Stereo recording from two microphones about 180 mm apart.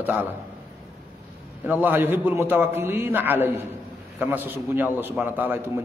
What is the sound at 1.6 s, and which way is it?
A man's voice, 10° right (ahead or behind).